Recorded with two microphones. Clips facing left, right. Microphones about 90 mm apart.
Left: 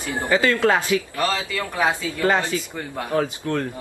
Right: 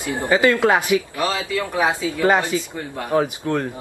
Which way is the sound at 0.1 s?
20° right (ahead or behind).